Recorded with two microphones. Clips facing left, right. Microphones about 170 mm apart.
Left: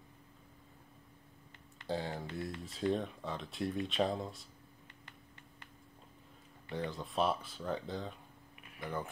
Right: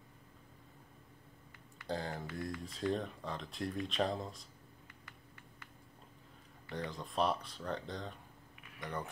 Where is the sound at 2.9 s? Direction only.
Centre (ahead or behind).